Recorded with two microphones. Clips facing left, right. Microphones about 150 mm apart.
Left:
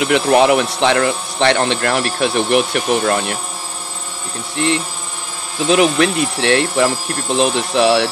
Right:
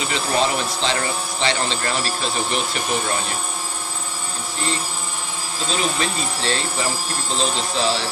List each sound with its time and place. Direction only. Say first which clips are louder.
0.0 s speech: left 9 dB; 65° left (ahead or behind)
4.6 s speech: left 9 dB; 70° left (ahead or behind)